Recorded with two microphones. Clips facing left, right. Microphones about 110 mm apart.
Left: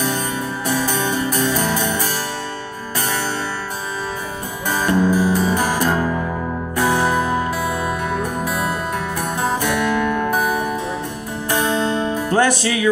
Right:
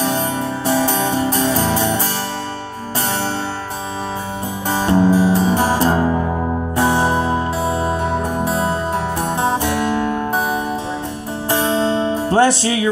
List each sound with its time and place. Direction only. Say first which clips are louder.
0.7 s music: right 4 dB; 30° right (ahead or behind)
4.6 s music: right 2 dB; 30° right (ahead or behind)